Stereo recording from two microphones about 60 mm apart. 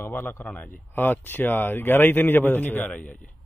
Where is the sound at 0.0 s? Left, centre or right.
Left.